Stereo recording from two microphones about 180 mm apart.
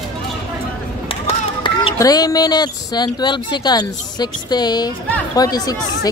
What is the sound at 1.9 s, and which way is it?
Speech, 20° left (ahead or behind).